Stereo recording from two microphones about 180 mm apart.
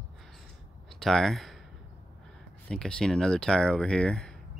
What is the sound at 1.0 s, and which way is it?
Speech, centre (ahead or behind).